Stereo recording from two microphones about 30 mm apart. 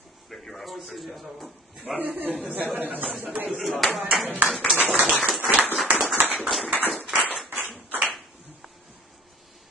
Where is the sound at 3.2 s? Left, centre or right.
Right.